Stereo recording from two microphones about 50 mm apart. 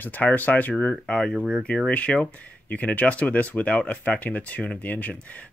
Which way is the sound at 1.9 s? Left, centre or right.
Left.